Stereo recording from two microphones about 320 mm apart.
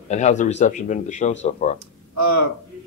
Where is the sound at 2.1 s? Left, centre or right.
Right.